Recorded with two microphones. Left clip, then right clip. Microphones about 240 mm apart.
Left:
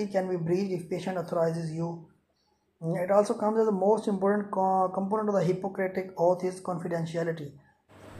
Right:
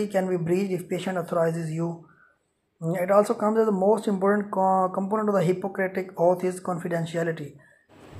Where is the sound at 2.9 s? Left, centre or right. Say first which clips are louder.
Right 4 dB; centre.